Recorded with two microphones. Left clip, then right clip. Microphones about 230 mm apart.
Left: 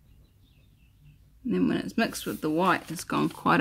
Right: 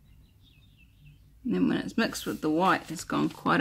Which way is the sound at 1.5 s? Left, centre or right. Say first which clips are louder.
Left 1 dB; centre.